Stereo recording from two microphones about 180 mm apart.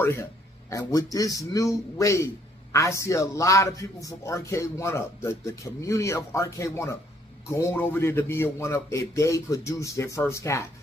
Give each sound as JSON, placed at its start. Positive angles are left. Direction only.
{"t": 0.0, "sound": "a man's voice", "side_deg": 15}